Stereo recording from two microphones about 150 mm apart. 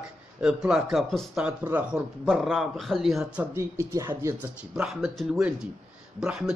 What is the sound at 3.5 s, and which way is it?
Speech, 20° right (ahead or behind).